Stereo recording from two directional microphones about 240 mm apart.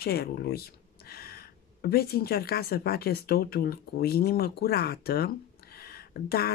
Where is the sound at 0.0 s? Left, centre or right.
Left.